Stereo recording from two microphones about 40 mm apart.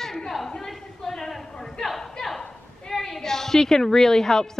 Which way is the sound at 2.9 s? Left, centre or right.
Centre.